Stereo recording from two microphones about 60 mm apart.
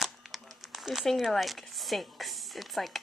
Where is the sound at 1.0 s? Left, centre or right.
Centre.